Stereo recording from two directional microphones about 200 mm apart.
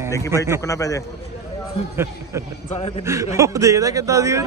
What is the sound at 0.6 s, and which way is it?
Speech, 15° left (ahead or behind).